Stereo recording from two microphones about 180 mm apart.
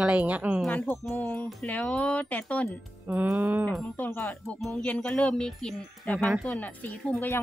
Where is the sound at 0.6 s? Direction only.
10° left (ahead or behind).